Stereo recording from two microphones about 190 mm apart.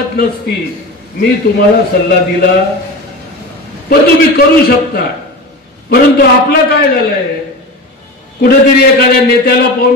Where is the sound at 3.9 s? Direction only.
55° left (ahead or behind).